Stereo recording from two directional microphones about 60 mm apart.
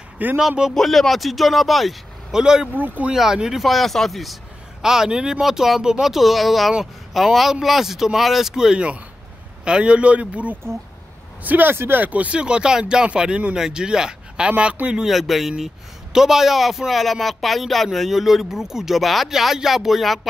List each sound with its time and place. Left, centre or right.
0.4 s speech: centre
2.4 s speech: centre
2.7 s speech: right
3.1 s speech: centre
15.0 s speech: centre